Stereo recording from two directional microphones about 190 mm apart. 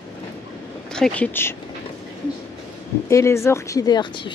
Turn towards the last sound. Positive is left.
turn(degrees=25)  # may be behind; listen again after turning